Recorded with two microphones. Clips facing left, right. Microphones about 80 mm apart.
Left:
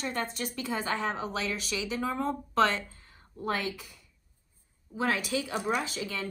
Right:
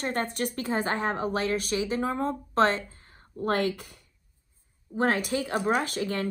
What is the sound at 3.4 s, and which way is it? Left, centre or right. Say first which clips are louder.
A woman's voice: right 6 dB; right.